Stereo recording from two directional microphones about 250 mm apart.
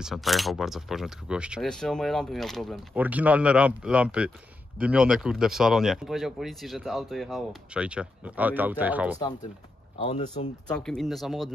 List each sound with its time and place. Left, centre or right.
0.0 s speech: centre
10.0 s speech: left
10.7 s speech: centre